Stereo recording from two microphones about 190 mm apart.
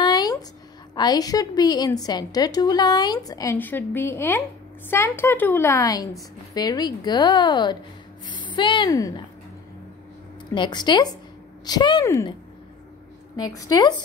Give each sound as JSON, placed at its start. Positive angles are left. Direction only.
{"t": 0.0, "sound": "a sound", "side_deg": 20}
{"t": 0.9, "sound": "a woman's voice", "side_deg": 20}
{"t": 10.5, "sound": "a woman's voice", "side_deg": 25}
{"t": 13.4, "sound": "a woman's voice", "side_deg": 20}